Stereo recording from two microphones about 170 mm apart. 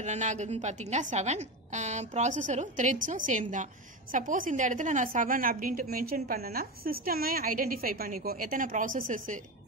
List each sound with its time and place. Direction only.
0.0 s a woman's voice: 45° right (ahead or behind)